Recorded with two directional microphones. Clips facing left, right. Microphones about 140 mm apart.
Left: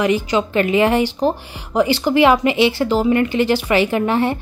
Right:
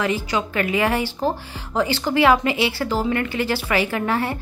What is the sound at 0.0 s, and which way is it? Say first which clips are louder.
Speech: left 5 dB; 20° left (ahead or behind).